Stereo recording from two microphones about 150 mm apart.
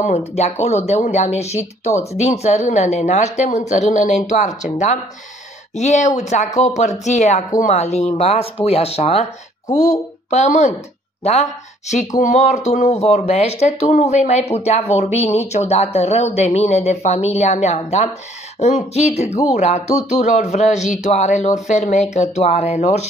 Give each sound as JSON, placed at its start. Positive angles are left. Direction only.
{"t": 0.0, "sound": "speech", "side_deg": 45}
{"t": 12.2, "sound": "speech", "side_deg": 55}